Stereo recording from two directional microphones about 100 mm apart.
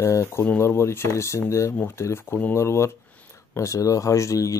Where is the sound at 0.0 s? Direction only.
25° left (ahead or behind).